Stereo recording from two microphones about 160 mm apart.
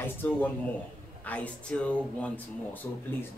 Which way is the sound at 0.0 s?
10° left (ahead or behind).